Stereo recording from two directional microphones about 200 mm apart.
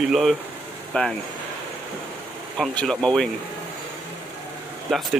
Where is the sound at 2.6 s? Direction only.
5° left (ahead or behind).